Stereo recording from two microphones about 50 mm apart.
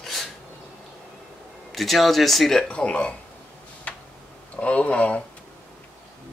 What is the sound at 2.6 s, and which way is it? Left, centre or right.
Speech, left.